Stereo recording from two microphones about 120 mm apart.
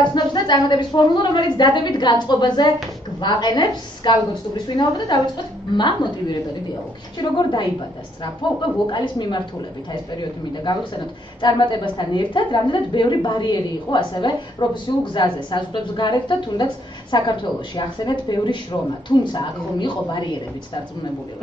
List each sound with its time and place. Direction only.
0.0 s a woman's voice: 40° left (ahead or behind)